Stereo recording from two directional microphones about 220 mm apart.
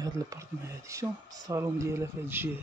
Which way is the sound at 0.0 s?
15° right (ahead or behind).